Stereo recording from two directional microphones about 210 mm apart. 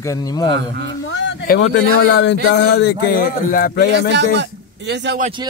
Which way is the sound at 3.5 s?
45° left (ahead or behind).